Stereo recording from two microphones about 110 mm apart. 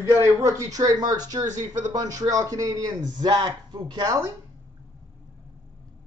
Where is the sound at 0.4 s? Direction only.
30° right (ahead or behind).